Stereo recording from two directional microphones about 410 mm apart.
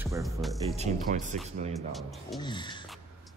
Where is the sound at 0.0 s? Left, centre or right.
Centre.